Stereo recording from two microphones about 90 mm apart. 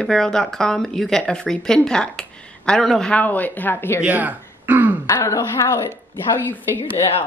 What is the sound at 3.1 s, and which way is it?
Speech, 20° left (ahead or behind).